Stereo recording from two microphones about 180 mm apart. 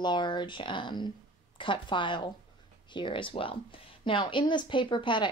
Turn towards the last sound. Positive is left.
turn(degrees=25)  # may be behind; listen again after turning